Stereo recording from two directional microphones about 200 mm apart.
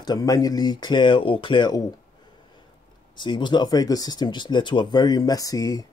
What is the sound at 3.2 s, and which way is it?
Speech, 25° left (ahead or behind).